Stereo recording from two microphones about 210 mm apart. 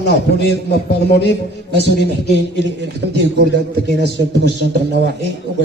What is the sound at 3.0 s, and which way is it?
Speech, 55° right (ahead or behind).